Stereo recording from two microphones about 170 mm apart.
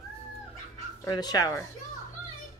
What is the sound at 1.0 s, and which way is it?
Speech, 25° left (ahead or behind).